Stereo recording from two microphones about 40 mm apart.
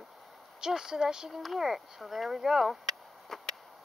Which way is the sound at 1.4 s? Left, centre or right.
Centre.